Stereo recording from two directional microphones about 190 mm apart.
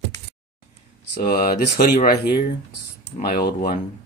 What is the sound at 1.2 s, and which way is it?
Speech, 50° left (ahead or behind).